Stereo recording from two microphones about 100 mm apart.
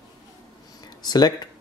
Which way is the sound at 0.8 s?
40° left (ahead or behind).